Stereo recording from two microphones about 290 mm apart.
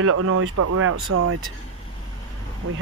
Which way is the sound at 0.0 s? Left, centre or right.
Right.